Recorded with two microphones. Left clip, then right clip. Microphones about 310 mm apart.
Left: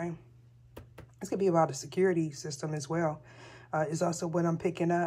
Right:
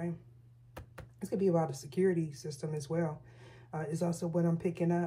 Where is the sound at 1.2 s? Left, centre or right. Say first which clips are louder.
Left 4 dB; left.